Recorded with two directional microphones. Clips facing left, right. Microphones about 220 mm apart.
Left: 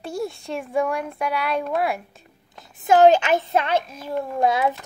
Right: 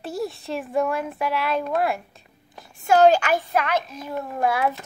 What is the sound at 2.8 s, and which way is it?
Child singing, 20° left (ahead or behind).